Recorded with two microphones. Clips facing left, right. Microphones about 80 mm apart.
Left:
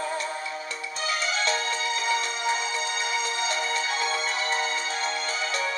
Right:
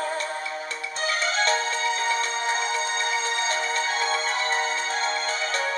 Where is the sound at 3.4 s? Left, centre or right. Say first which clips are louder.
Right 2 dB; right.